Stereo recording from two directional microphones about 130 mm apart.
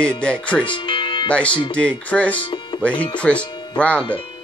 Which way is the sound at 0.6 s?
40° left (ahead or behind).